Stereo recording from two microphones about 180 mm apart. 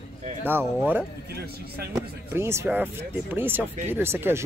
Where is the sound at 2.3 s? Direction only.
15° right (ahead or behind).